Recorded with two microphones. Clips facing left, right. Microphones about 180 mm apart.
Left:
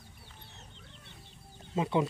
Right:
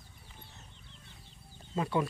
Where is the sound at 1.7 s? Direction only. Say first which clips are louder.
Left 2 dB; 20° left (ahead or behind).